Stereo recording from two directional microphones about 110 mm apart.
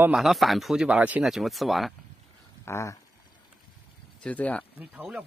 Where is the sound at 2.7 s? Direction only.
25° left (ahead or behind).